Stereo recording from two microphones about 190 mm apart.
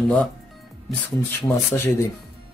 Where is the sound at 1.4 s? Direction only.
15° left (ahead or behind).